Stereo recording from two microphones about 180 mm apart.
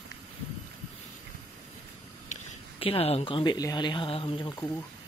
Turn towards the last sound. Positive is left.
turn(degrees=25)  # may be behind; listen again after turning